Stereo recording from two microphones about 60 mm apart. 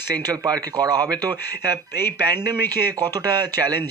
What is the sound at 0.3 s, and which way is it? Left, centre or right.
Speech, right.